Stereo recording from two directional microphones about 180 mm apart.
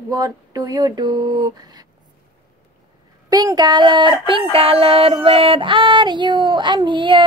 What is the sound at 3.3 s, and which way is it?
Speech, 20° right (ahead or behind).